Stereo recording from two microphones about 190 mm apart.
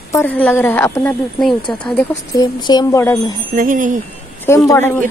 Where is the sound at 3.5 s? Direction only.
45° right (ahead or behind).